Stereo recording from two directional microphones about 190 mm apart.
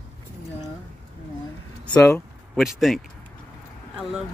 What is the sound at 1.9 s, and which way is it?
Speech, 15° left (ahead or behind).